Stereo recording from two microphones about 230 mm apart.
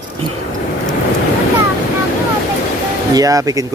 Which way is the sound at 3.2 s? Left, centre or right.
Centre.